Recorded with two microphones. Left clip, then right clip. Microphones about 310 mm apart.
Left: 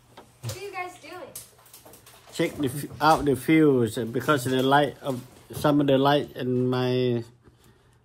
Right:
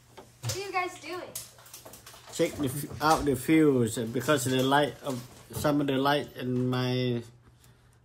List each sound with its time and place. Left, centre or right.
2.3 s speech: centre